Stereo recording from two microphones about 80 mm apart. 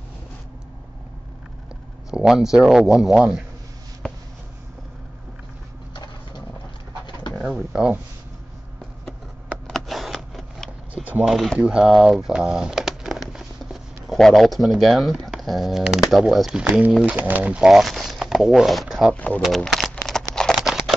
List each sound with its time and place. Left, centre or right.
2.0 s a man's voice: centre
7.4 s speech: centre
9.7 s a sound: centre
11.2 s a man's voice: centre
11.5 s speech: centre
17.6 s speech: centre
19.1 s speech: centre
19.4 s a sound: centre